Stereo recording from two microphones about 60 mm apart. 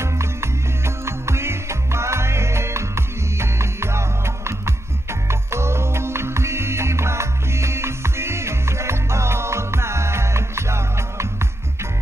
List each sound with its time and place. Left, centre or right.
0.0 s music: right